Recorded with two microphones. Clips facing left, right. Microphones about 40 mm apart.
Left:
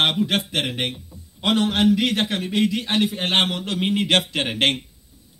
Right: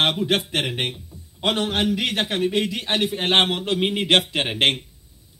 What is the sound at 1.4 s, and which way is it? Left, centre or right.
A man's voice, right.